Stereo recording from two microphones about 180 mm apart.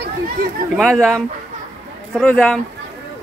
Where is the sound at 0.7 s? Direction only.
Centre (ahead or behind).